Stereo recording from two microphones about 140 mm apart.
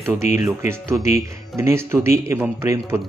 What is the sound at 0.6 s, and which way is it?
Speech, 20° right (ahead or behind).